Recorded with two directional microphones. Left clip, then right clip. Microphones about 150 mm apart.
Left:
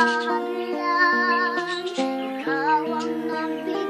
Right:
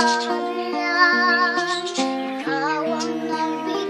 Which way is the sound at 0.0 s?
25° right (ahead or behind).